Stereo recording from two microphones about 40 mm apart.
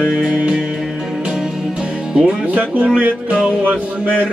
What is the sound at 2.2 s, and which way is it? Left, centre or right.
Music, right.